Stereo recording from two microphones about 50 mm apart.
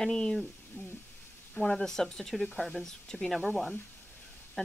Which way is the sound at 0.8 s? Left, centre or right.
Left.